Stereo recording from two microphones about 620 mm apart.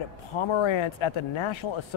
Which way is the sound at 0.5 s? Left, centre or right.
Left.